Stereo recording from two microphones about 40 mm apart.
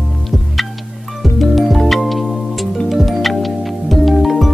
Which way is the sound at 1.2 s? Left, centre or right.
Centre.